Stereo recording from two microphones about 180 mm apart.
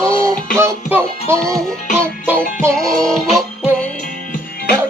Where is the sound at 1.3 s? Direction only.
15° right (ahead or behind).